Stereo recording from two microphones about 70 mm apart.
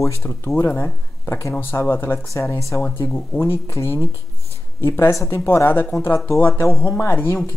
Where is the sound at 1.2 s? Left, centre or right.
Left.